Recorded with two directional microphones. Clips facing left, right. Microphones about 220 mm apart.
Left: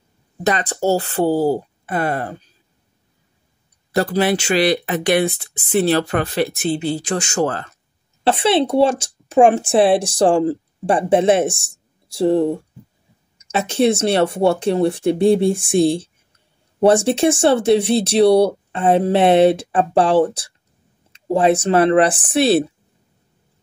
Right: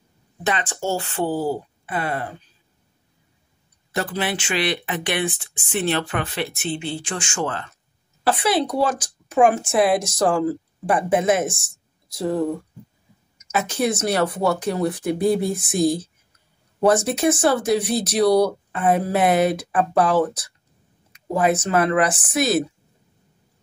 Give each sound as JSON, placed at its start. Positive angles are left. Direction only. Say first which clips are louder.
{"t": 0.4, "sound": "speech", "louder": "left 6 dB", "side_deg": 40}
{"t": 3.9, "sound": "speech", "louder": "left 8 dB", "side_deg": 40}
{"t": 8.2, "sound": "speech", "louder": "left 4 dB", "side_deg": 25}